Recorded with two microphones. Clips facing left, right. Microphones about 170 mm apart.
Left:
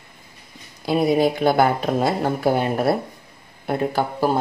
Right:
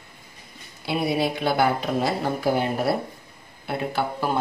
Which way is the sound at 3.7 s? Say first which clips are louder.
Left 4 dB; 40° left (ahead or behind).